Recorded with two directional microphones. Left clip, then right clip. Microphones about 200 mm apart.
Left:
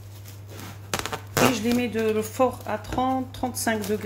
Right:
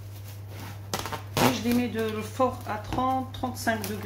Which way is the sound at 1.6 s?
40° left (ahead or behind).